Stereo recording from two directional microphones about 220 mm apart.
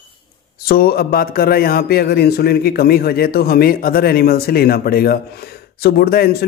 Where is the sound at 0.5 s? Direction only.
45° left (ahead or behind).